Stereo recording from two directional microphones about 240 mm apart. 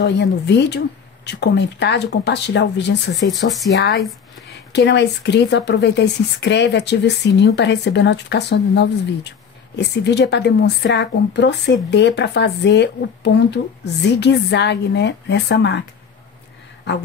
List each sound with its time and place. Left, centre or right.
0.0 s speech: left